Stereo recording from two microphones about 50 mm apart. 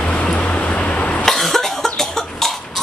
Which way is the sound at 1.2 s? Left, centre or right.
Centre.